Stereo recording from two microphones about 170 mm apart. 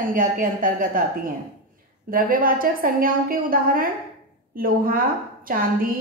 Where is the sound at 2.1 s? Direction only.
55° right (ahead or behind).